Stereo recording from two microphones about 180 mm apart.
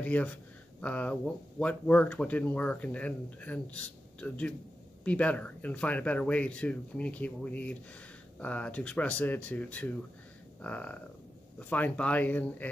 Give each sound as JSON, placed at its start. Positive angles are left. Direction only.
{"t": 0.0, "sound": "speech", "side_deg": 10}